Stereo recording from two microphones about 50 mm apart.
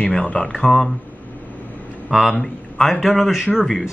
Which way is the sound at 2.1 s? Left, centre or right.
Centre.